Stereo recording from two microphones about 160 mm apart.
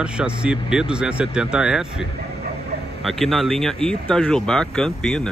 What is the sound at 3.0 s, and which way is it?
Speech, centre (ahead or behind).